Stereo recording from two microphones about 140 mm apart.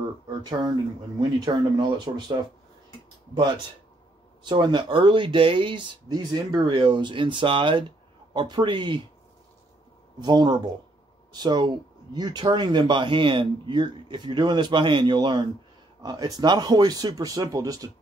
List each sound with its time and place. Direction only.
0.4 s speech: 30° right (ahead or behind)
4.4 s speech: 35° right (ahead or behind)
10.2 s speech: 30° right (ahead or behind)